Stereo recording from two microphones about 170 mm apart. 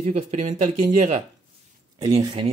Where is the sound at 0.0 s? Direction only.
40° right (ahead or behind).